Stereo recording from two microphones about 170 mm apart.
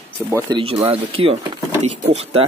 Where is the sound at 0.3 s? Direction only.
25° right (ahead or behind).